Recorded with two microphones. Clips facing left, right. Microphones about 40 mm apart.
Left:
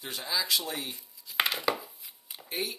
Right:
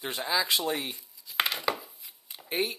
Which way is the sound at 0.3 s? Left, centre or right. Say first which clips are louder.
Right 3 dB; right.